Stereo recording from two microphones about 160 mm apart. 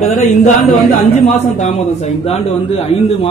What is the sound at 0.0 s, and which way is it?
A man's voice, 45° left (ahead or behind).